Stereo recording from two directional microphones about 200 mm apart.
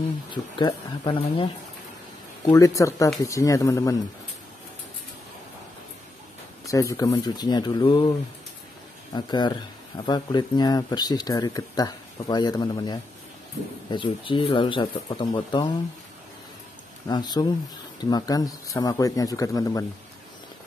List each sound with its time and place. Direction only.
0.3 s a man's voice: 20° left (ahead or behind)
6.6 s speech: 15° left (ahead or behind)
9.1 s speech: 20° left (ahead or behind)
17.1 s a man's voice: 20° left (ahead or behind)